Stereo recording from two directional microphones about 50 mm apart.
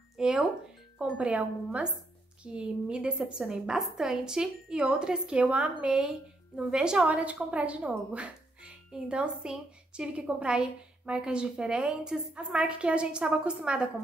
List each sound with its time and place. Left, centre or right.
0.2 s music: centre
1.1 s a woman's voice: right
7.1 s speech: right